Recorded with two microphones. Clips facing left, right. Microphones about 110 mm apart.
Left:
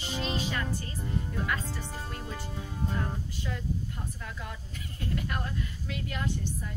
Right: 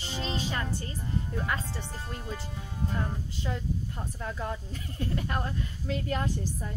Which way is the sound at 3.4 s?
30° right (ahead or behind).